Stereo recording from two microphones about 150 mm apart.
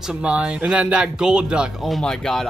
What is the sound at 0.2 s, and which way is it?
Speech, 10° right (ahead or behind).